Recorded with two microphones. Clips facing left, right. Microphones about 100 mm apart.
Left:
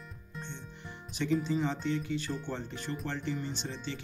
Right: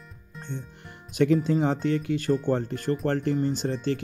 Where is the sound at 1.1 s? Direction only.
55° right (ahead or behind).